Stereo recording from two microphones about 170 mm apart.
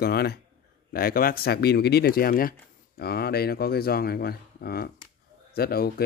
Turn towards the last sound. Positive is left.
turn(degrees=65)  # may be behind; listen again after turning